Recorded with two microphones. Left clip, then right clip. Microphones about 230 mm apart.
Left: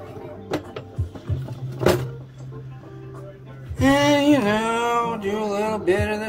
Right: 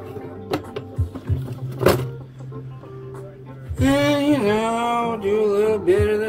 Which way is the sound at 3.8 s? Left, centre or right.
Centre.